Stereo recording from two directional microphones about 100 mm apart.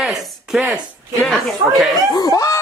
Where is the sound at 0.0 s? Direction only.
5° right (ahead or behind).